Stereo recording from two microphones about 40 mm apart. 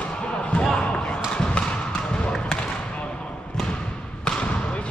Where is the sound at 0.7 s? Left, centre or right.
Left.